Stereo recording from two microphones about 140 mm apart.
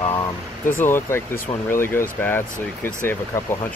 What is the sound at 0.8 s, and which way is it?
Speech, 15° left (ahead or behind).